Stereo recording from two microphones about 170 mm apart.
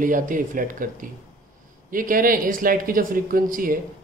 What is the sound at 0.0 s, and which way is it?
Speech, 50° right (ahead or behind).